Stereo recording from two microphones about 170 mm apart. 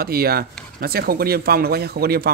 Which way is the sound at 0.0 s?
65° right (ahead or behind).